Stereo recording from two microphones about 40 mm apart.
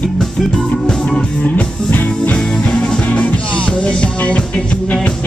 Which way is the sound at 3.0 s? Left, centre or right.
Left.